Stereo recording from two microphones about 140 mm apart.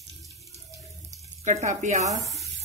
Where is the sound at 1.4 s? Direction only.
60° right (ahead or behind).